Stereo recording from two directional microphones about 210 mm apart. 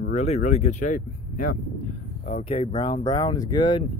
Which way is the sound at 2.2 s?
25° left (ahead or behind).